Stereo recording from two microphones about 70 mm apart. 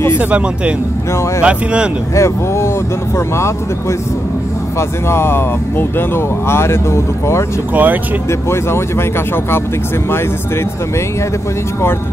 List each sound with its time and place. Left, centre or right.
0.2 s speech: centre
2.1 s speech: left
4.7 s speech: left
7.7 s speech: right
8.3 s speech: left